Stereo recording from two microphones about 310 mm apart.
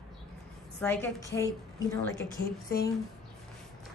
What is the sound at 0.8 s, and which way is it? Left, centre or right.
Speech, centre.